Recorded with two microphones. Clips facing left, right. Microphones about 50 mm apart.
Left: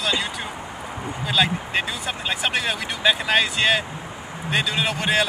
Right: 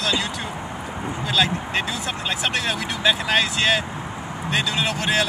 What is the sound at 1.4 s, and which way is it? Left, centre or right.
Speech, centre.